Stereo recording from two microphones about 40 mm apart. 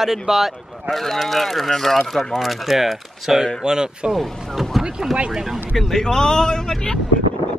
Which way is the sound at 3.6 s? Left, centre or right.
Centre.